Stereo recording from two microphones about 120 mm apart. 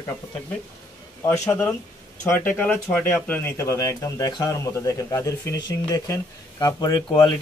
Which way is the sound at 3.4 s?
20° left (ahead or behind).